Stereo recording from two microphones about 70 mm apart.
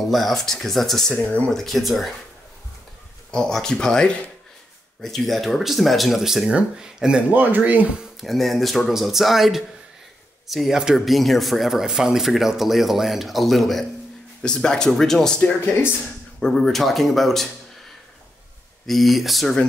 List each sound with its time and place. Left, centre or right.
0.0 s speech: centre
1.1 s speech: centre
1.5 s speech: centre
3.3 s speech: centre
7.3 s speech: right
8.0 s speech: centre
15.4 s speech: left
16.3 s speech: centre
18.9 s speech: centre